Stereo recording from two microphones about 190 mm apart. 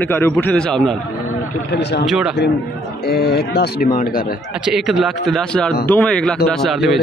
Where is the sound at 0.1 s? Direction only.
10° left (ahead or behind).